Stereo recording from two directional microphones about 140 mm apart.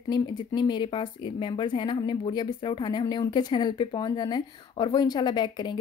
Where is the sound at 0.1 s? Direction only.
30° left (ahead or behind).